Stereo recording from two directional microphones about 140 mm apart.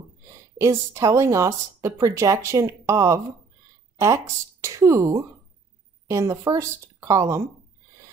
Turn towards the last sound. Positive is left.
turn(degrees=-20)  # may be behind; listen again after turning